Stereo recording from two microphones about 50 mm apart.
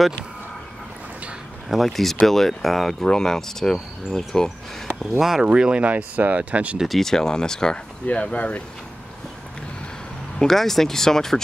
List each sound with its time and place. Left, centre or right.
1.9 s speech: centre
5.2 s speech: centre
5.5 s speech: centre
6.9 s speech: centre; by 8.6 s left
10.4 s speech: centre